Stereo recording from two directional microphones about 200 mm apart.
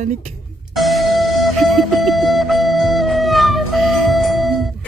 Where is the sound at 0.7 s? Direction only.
Centre (ahead or behind).